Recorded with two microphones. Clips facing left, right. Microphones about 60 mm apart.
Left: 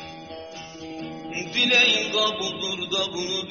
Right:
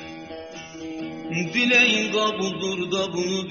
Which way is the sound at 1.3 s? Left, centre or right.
Right.